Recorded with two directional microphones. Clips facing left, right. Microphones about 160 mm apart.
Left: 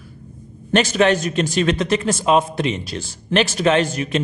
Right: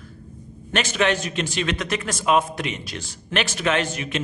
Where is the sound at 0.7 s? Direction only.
35° left (ahead or behind).